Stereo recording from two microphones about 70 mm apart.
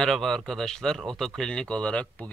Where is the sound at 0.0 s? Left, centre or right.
Centre.